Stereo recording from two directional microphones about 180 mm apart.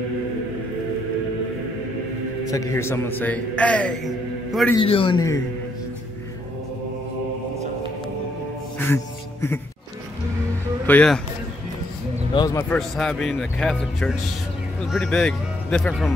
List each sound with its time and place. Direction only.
2.4 s a man's voice: 20° left (ahead or behind); by 4.7 s centre (ahead or behind)
4.7 s a man's voice: 30° left (ahead or behind)
8.7 s music: 15° left (ahead or behind)
10.9 s a man's voice: 5° left (ahead or behind)
12.4 s a man's voice: 20° left (ahead or behind)
12.6 s speech: 5° left (ahead or behind)